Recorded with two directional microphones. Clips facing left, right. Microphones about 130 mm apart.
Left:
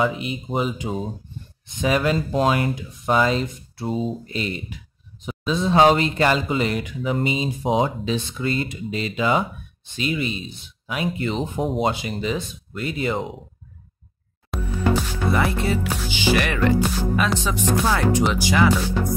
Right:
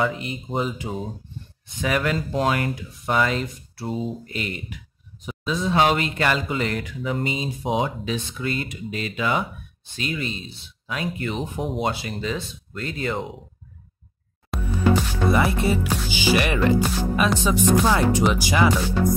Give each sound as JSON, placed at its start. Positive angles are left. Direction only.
{"t": 0.0, "sound": "speech", "side_deg": 20}
{"t": 14.5, "sound": "music", "side_deg": 0}
{"t": 15.3, "sound": "speech", "side_deg": -15}